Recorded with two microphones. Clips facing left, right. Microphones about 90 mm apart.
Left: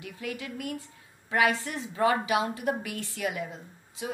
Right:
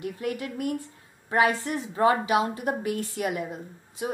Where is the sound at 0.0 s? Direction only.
45° right (ahead or behind).